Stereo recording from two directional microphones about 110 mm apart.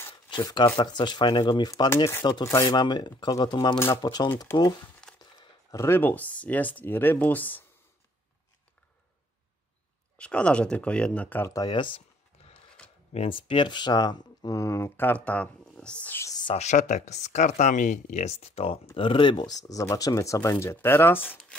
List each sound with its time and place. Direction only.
0.3 s speech: 40° left (ahead or behind)
2.4 s speech: 25° left (ahead or behind)
2.7 s speech: 40° left (ahead or behind)
5.2 s crumpling: 40° left (ahead or behind)
5.8 s speech: 20° left (ahead or behind)
10.1 s speech: 10° left (ahead or behind)
11.4 s speech: 30° left (ahead or behind)
11.7 s speech: 50° left (ahead or behind)
13.1 s speech: 60° left (ahead or behind); by 16.2 s 10° left (ahead or behind)
16.5 s speech: 90° left; by 18.8 s 65° left (ahead or behind)
18.9 s speech: 50° left (ahead or behind); by 21.4 s 20° left (ahead or behind)